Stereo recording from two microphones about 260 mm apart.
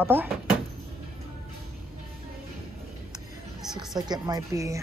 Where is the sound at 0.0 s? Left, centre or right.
Centre.